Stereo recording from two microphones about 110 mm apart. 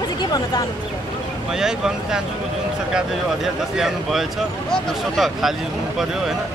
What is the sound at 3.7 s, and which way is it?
Speech, centre (ahead or behind).